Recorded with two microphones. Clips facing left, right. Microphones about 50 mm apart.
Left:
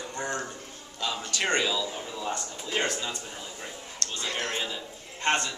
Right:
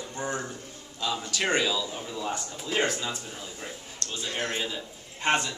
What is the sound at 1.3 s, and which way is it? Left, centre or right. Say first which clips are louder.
A man's voice: even; centre.